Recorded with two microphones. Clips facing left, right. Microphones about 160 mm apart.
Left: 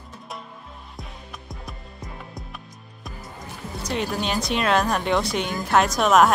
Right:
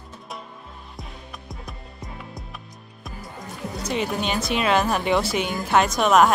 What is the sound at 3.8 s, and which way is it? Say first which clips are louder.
Speech: right 1 dB; centre (ahead or behind).